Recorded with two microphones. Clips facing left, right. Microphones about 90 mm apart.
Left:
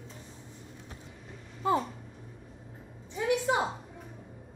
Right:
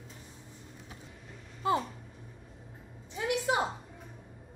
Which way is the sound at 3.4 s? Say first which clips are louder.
Left 1 dB; 5° right (ahead or behind).